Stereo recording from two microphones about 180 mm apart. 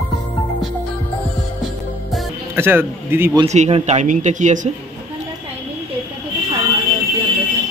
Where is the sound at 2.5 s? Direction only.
10° right (ahead or behind).